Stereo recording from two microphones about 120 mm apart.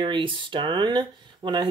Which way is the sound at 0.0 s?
45° right (ahead or behind).